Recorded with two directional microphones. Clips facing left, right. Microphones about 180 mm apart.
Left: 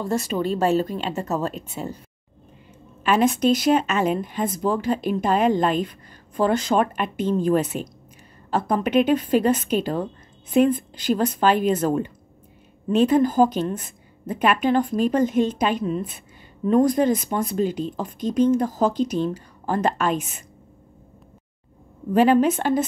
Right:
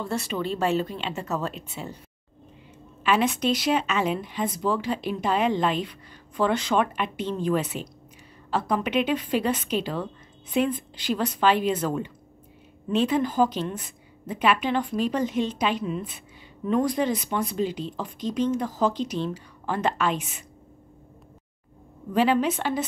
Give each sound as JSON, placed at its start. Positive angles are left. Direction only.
{"t": 0.0, "sound": "speech", "side_deg": 45}
{"t": 3.0, "sound": "speech", "side_deg": 45}
{"t": 22.1, "sound": "speech", "side_deg": 50}